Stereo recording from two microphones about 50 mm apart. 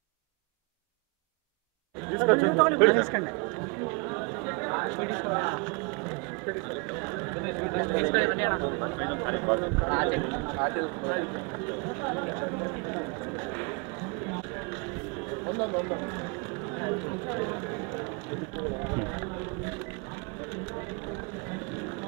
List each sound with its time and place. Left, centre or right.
2.0 s speech: centre
4.0 s chatter: centre
5.2 s speech: centre
12.4 s speech: centre
12.9 s speech: centre
15.4 s speech: centre